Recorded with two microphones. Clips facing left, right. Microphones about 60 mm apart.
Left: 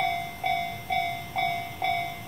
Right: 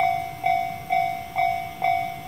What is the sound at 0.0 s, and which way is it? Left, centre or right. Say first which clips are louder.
Train: right 5 dB; centre.